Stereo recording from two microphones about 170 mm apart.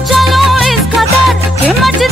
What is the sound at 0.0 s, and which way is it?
Music, centre (ahead or behind).